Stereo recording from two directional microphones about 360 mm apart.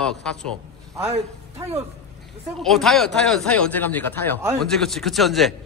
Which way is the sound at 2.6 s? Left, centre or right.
Centre.